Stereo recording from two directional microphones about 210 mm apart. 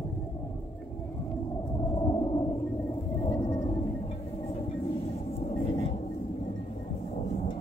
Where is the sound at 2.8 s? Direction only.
15° left (ahead or behind).